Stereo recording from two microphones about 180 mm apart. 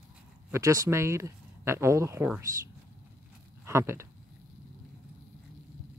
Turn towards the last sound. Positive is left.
turn(degrees=-15)  # may be behind; listen again after turning